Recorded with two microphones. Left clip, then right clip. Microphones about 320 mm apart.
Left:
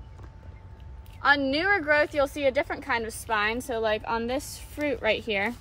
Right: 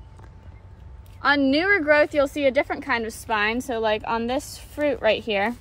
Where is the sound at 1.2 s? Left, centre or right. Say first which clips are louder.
Right 3 dB; right.